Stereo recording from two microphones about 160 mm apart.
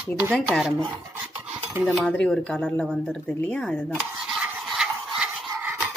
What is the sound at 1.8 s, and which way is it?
Speech, centre (ahead or behind).